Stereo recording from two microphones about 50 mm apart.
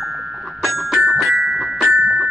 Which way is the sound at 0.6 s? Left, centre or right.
Centre.